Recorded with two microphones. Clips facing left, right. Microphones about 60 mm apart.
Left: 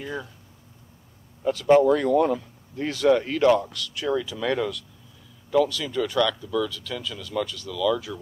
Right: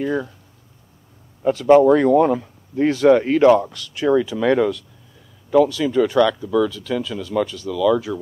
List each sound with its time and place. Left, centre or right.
0.0 s speech: right
1.4 s speech: right